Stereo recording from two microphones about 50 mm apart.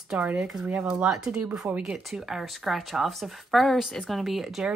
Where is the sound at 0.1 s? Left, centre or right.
Right.